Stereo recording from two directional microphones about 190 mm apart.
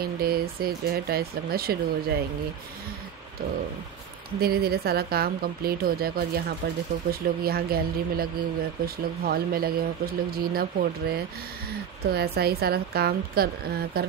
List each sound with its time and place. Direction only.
0.0 s speech: 55° right (ahead or behind)
4.4 s a woman's voice: 55° right (ahead or behind)